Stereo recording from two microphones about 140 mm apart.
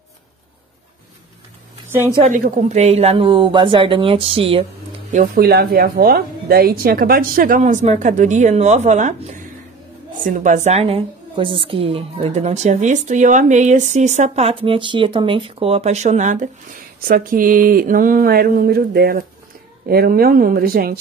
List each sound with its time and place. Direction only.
2.3 s speech: 70° right (ahead or behind); by 4.6 s 40° right (ahead or behind)
5.1 s speech: 90° right; by 9.4 s 55° right (ahead or behind)
10.2 s a woman's voice: 70° right (ahead or behind)
17.1 s a sound: 85° right